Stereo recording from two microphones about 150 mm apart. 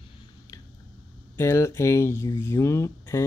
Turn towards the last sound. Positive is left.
turn(degrees=20)  # may be behind; listen again after turning